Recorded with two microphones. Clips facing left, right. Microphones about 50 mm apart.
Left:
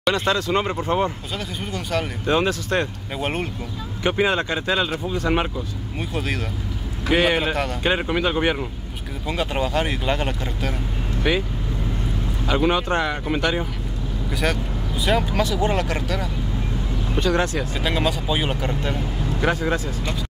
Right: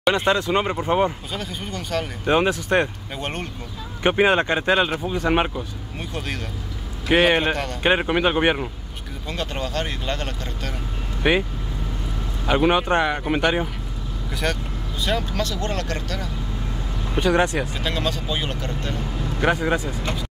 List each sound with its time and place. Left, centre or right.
0.1 s speech: right
1.3 s speech: centre
2.2 s speech: right
3.2 s speech: centre
4.0 s speech: right
5.9 s speech: centre
7.1 s speech: centre
9.3 s speech: centre
11.3 s speech: right
12.4 s speech: centre
14.3 s speech: centre
17.1 s speech: right
17.7 s speech: centre
19.4 s speech: centre